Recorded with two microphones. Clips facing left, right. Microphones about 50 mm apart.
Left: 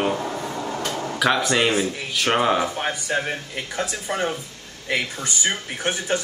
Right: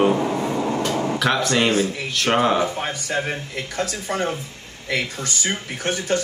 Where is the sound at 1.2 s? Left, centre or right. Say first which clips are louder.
Left 2 dB; centre.